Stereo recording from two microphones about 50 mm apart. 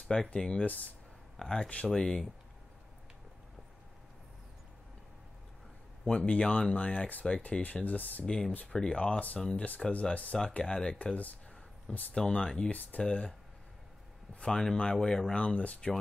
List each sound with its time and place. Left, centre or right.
0.0 s speech: centre
1.3 s speech: centre
6.1 s speech: left
8.3 s speech: centre
8.9 s speech: left
11.0 s speech: left
11.9 s speech: centre
14.4 s speech: centre
15.3 s speech: left